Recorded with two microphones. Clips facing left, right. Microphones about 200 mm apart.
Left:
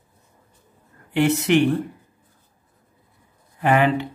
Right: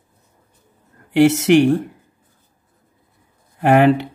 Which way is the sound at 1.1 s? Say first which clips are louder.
Right 6 dB; 85° right.